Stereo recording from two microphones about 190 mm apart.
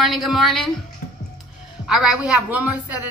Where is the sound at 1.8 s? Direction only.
5° right (ahead or behind).